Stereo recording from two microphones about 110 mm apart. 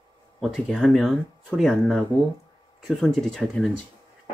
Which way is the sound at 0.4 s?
Centre (ahead or behind).